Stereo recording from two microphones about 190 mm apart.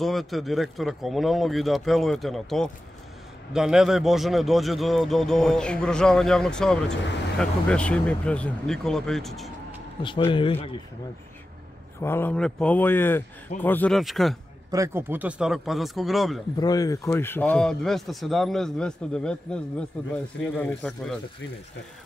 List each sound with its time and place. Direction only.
0.0 s a man's voice: centre (ahead or behind)
10.0 s a man's voice: 25° left (ahead or behind)
12.0 s a man's voice: 10° left (ahead or behind)
14.7 s a man's voice: 15° right (ahead or behind)
16.5 s a man's voice: 20° left (ahead or behind)